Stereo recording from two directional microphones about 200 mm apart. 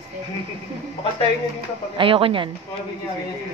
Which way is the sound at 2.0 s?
25° right (ahead or behind).